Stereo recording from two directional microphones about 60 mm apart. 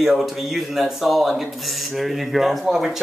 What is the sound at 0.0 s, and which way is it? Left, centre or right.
Speech, centre.